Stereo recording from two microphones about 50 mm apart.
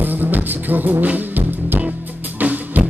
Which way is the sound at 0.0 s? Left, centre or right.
Right.